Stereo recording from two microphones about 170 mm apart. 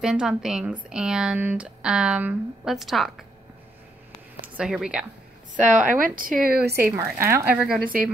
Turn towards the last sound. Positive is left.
turn(degrees=-5)  # may be behind; listen again after turning